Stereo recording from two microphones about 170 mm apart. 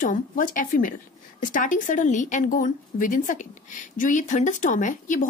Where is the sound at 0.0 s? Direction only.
50° left (ahead or behind).